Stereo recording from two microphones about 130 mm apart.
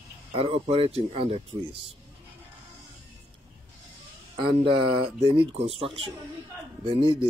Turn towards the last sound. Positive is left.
turn(degrees=-40)  # may be behind; listen again after turning